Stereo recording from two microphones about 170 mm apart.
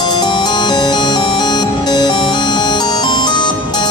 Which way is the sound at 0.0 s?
25° left (ahead or behind).